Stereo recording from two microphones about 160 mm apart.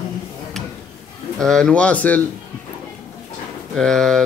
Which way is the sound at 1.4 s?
5° left (ahead or behind).